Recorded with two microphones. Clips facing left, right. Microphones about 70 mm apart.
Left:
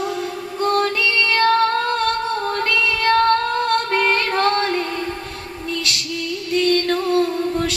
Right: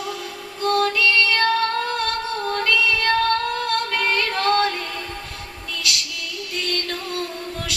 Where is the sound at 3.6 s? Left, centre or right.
Left.